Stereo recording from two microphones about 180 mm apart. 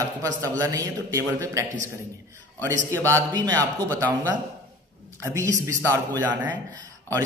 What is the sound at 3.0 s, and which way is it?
Speech, 20° right (ahead or behind).